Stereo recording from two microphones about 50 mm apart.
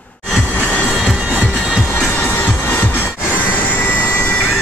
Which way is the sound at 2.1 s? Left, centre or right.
Left.